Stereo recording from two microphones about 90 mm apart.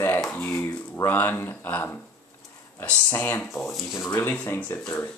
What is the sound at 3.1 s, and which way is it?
Speech, 25° left (ahead or behind).